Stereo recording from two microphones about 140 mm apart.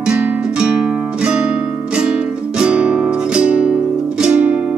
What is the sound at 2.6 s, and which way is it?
Music, 5° right (ahead or behind).